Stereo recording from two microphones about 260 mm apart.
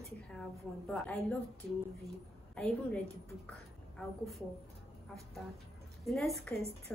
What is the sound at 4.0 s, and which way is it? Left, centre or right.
Speech, centre.